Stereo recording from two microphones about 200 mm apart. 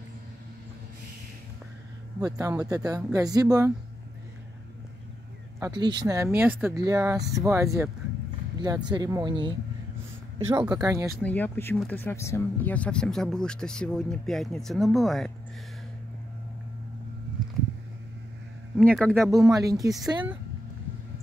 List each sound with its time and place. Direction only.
2.1 s speech: 15° right (ahead or behind)
5.6 s speech: 20° right (ahead or behind)
10.8 s speech: 15° right (ahead or behind)
11.2 s speech: 10° left (ahead or behind)
18.8 s speech: centre (ahead or behind)
19.3 s speech: 15° right (ahead or behind)